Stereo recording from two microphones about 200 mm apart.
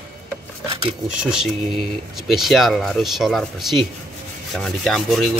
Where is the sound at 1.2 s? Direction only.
5° right (ahead or behind).